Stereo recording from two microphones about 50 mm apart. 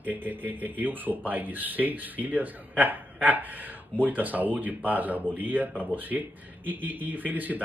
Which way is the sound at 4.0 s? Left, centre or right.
Right.